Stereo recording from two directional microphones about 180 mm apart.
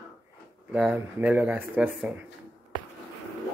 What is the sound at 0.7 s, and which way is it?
Speech, 10° right (ahead or behind).